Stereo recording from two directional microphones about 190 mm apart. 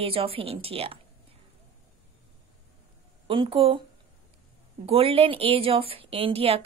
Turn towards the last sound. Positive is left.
turn(degrees=-30)  # may be behind; listen again after turning